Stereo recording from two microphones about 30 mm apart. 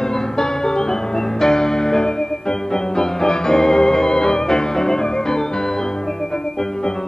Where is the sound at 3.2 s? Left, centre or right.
Left.